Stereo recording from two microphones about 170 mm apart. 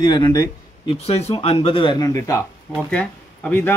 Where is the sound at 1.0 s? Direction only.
40° left (ahead or behind); by 3.7 s 10° left (ahead or behind).